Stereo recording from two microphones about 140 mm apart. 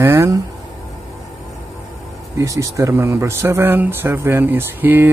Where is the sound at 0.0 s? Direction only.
20° right (ahead or behind).